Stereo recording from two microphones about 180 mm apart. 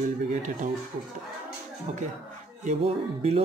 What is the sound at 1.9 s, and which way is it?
Speech, 40° right (ahead or behind).